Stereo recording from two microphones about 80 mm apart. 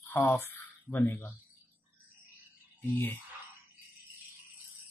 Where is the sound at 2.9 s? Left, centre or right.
Left.